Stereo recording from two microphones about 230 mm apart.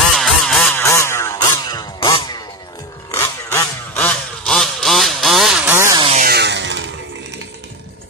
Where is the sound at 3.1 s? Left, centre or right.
Centre.